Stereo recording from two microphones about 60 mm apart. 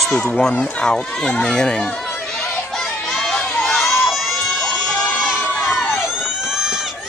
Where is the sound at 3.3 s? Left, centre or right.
Centre.